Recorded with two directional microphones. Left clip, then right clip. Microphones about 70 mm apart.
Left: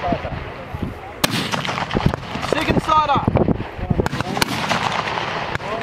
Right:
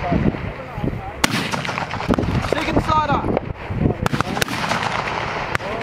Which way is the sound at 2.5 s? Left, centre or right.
Left.